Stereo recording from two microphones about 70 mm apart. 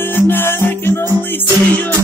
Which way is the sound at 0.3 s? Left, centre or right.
Left.